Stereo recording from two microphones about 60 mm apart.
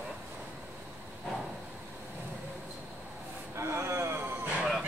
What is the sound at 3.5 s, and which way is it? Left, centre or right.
Speech, right.